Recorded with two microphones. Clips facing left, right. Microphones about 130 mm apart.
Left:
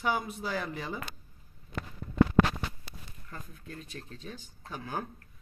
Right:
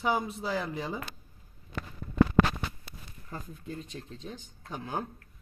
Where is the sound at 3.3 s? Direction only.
25° right (ahead or behind).